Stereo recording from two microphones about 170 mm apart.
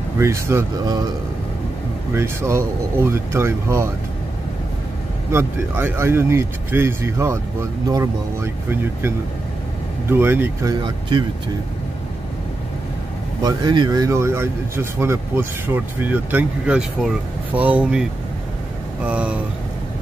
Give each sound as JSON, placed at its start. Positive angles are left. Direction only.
{"t": 0.2, "sound": "speech", "side_deg": -15}
{"t": 2.1, "sound": "speech", "side_deg": -15}
{"t": 5.3, "sound": "speech", "side_deg": -15}
{"t": 13.4, "sound": "speech", "side_deg": -25}
{"t": 19.0, "sound": "speech", "side_deg": -10}